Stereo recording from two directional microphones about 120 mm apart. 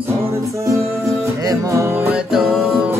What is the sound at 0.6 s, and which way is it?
Music, 25° right (ahead or behind).